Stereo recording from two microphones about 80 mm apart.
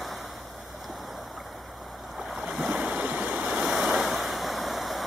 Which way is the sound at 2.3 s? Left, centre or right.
Centre.